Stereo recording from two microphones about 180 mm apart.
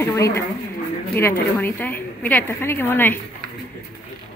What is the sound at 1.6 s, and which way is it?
A woman's voice, 10° left (ahead or behind).